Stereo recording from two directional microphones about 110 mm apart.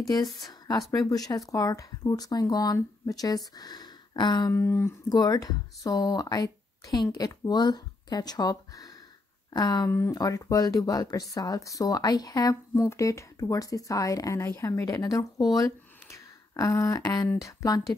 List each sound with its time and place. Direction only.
0.0 s speech: 40° left (ahead or behind)
4.5 s speech: 25° left (ahead or behind)
5.1 s speech: 35° left (ahead or behind)
9.8 s speech: 25° left (ahead or behind)
10.1 s speech: 35° left (ahead or behind)